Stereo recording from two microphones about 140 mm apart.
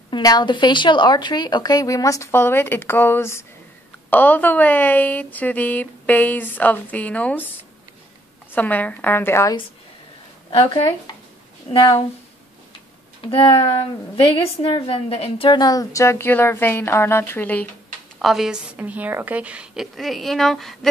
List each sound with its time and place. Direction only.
0.1 s a woman's voice: 30° left (ahead or behind); by 7.4 s 10° left (ahead or behind)
8.5 s a woman's voice: 10° left (ahead or behind)
10.5 s a woman's voice: 40° left (ahead or behind)
13.2 s speech: 40° left (ahead or behind)
13.5 s a woman's voice: 25° left (ahead or behind)
14.1 s a woman's voice: 40° left (ahead or behind); by 17.6 s 10° left (ahead or behind)
18.2 s a woman's voice: 5° right (ahead or behind)